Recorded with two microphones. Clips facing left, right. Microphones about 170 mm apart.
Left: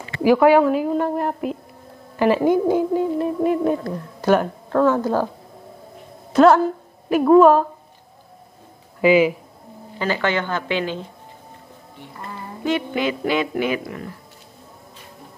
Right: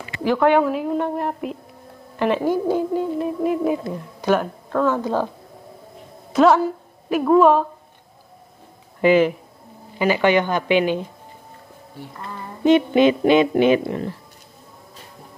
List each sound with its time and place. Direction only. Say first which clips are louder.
0.2 s speech: left 3 dB; 10° left (ahead or behind)
2.4 s speech: left 3 dB; 15° left (ahead or behind); by 3.8 s 5° right (ahead or behind)
4.3 s speech: left 2 dB; 5° left (ahead or behind)
6.3 s a woman's voice: left 2 dB; centre (ahead or behind)
9.0 s speech: even; 10° left (ahead or behind)
9.9 s a woman's voice: right 5 dB; 15° right (ahead or behind)
12.6 s a woman's voice: right 8 dB; 20° right (ahead or behind)